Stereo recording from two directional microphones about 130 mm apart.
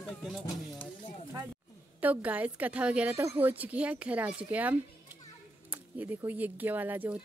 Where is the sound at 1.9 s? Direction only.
10° right (ahead or behind).